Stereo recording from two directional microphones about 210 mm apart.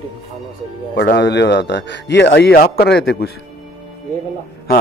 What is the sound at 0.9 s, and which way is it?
Speech, 55° left (ahead or behind).